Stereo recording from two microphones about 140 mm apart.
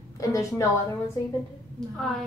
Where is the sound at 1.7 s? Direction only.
5° left (ahead or behind).